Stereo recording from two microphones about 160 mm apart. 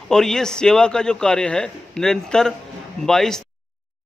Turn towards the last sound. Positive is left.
turn(degrees=5)  # may be behind; listen again after turning